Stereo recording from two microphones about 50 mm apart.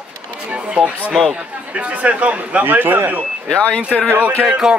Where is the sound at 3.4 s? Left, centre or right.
Centre.